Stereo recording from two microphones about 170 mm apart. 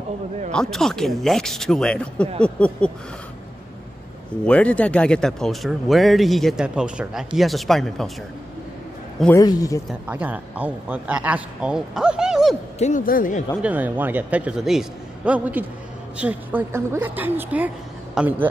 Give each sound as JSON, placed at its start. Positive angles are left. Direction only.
{"t": 0.5, "sound": "speech", "side_deg": 5}
{"t": 4.5, "sound": "speech", "side_deg": 5}
{"t": 9.3, "sound": "a man's voice", "side_deg": 20}
{"t": 9.8, "sound": "a man's voice", "side_deg": -10}
{"t": 12.7, "sound": "speech", "side_deg": 45}
{"t": 13.6, "sound": "a man's voice", "side_deg": -10}